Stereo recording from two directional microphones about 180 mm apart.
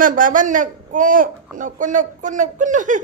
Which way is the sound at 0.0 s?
50° right (ahead or behind).